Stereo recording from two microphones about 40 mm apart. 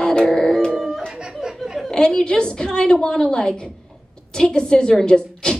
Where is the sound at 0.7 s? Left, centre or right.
Centre.